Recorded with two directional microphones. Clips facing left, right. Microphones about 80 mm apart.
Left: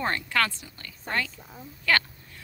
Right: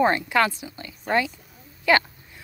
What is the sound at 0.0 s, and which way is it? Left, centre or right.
Speech, centre.